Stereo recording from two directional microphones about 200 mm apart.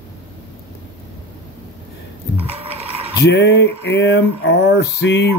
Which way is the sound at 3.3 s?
55° left (ahead or behind).